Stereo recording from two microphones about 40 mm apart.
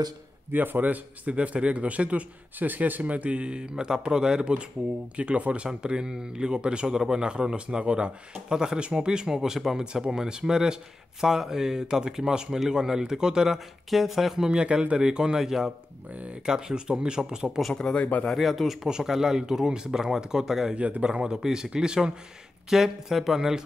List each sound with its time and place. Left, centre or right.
0.5 s a man's voice: right
2.6 s speech: right
8.5 s speech: centre
10.0 s speech: centre
13.8 s speech: centre
14.5 s speech: right
17.9 s speech: left
18.3 s speech: centre
18.9 s speech: centre
20.7 s a man's voice: right
21.0 s speech: right
22.7 s speech: centre